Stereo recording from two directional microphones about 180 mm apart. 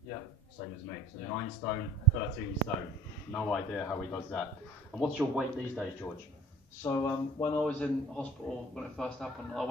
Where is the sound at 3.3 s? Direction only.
Centre (ahead or behind).